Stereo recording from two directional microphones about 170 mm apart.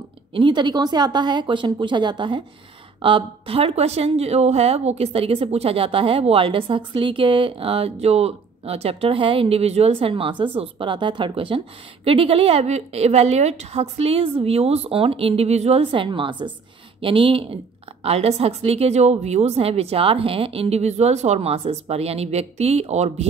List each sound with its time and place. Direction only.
0.3 s a woman's voice: 30° right (ahead or behind)